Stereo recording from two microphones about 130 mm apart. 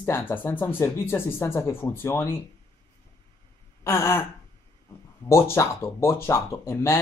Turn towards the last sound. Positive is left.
turn(degrees=20)  # may be behind; listen again after turning